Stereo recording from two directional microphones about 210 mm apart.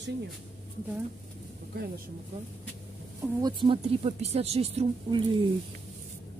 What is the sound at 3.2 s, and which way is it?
Speech, 20° right (ahead or behind).